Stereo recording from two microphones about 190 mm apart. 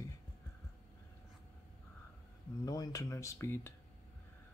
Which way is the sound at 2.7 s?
20° left (ahead or behind).